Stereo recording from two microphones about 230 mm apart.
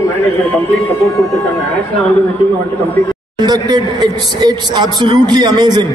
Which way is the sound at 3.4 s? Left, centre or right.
Centre.